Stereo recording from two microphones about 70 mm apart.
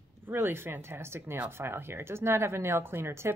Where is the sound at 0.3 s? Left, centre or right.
Right.